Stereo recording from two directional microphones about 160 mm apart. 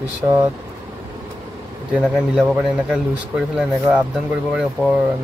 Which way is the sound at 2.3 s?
Centre (ahead or behind).